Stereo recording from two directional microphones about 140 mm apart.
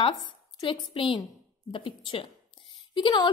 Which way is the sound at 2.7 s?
35° left (ahead or behind).